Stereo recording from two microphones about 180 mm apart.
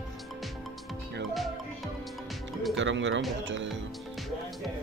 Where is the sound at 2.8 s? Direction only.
90° right.